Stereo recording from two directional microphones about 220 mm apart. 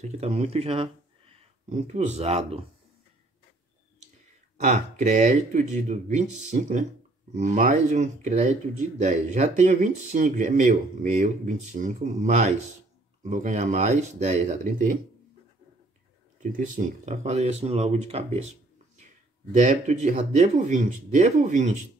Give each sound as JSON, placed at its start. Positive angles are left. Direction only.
{"t": 0.0, "sound": "speech", "side_deg": -30}
{"t": 4.6, "sound": "speech", "side_deg": -30}
{"t": 16.5, "sound": "speech", "side_deg": -35}
{"t": 19.5, "sound": "speech", "side_deg": -35}